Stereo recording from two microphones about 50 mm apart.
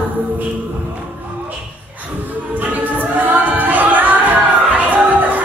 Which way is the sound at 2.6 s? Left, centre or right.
Right.